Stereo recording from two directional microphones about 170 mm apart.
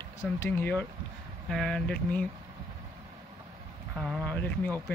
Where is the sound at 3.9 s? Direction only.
Centre (ahead or behind).